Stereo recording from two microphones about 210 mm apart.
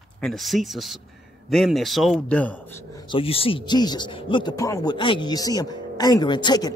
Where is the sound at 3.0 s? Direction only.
25° left (ahead or behind).